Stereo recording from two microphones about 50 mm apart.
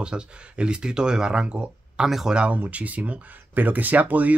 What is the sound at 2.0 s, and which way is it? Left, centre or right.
Speech, centre.